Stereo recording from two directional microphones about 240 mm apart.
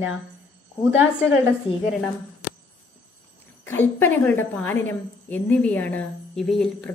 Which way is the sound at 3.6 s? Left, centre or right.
Centre.